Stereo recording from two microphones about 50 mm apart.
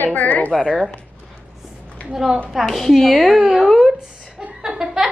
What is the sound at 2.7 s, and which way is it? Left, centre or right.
A woman's voice, centre.